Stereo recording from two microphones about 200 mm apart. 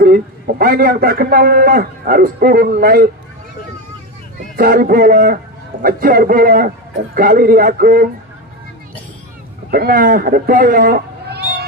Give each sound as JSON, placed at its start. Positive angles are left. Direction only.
{"t": 0.0, "sound": "a man's voice", "side_deg": -45}
{"t": 4.6, "sound": "a man's voice", "side_deg": -45}
{"t": 9.7, "sound": "speech", "side_deg": -45}